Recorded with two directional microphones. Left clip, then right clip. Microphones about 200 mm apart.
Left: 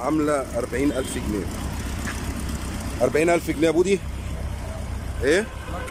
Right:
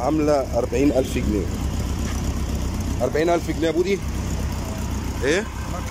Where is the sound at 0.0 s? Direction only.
5° right (ahead or behind).